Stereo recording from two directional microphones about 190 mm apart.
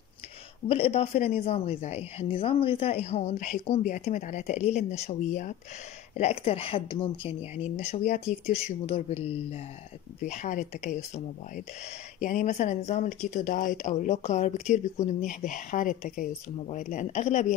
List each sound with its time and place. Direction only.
0.7 s speech: 30° left (ahead or behind)
8.5 s speech: 30° left (ahead or behind)
12.2 s speech: 45° left (ahead or behind)